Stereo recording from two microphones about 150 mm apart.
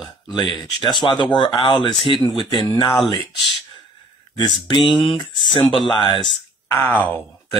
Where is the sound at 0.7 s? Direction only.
30° left (ahead or behind).